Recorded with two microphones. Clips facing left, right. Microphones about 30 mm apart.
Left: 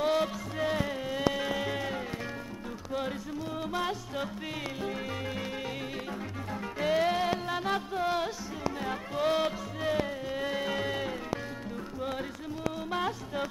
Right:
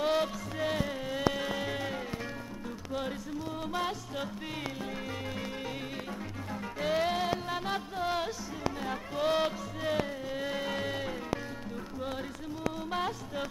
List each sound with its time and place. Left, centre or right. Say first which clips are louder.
0.0 s music: left 1 dB; centre
3.7 s speech: left 1 dB; centre
6.8 s music: left 3 dB; centre
8.8 s speech: left 2 dB; centre
10.0 s music: left 2 dB; centre